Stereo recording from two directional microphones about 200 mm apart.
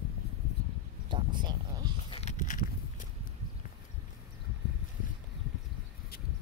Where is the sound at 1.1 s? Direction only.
25° right (ahead or behind).